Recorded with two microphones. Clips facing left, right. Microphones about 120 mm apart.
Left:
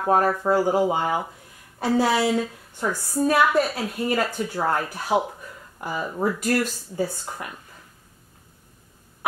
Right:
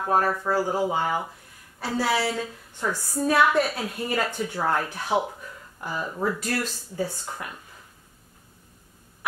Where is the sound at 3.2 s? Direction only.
5° left (ahead or behind).